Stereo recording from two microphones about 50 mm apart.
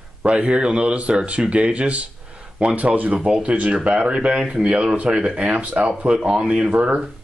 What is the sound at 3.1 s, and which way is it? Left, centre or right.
Speech, centre.